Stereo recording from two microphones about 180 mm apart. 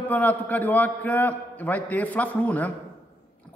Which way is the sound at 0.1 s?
10° left (ahead or behind).